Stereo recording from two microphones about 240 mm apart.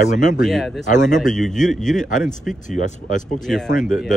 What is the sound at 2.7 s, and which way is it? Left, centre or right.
Speech, left.